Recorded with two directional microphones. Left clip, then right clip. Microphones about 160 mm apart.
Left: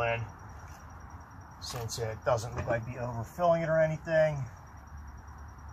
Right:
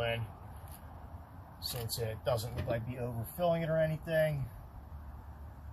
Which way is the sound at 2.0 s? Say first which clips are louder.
Left 5 dB; 10° right (ahead or behind).